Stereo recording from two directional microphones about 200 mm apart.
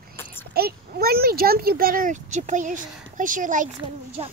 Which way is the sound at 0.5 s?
50° right (ahead or behind).